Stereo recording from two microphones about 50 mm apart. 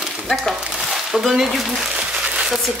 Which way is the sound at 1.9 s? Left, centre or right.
Right.